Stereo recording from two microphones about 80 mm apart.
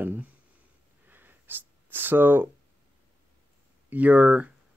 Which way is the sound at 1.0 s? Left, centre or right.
Right.